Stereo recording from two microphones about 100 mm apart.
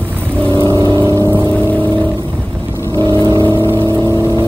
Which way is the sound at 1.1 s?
25° right (ahead or behind).